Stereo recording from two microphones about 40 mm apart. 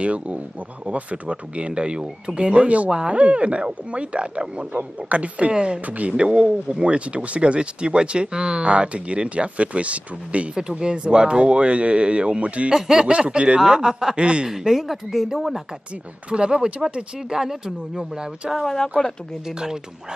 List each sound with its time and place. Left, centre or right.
0.0 s speech: right
2.9 s speech: centre
3.2 s speech: right
5.5 s speech: right
5.9 s speech: right
10.5 s speech: centre
12.7 s speech: centre
13.0 s speech: right
14.5 s speech: centre
16.3 s speech: right
18.7 s speech: centre
19.4 s speech: centre